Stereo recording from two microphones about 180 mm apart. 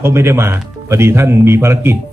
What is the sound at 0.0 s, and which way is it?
Speech, 15° right (ahead or behind).